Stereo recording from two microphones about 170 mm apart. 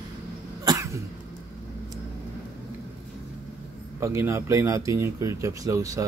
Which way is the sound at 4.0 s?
15° right (ahead or behind).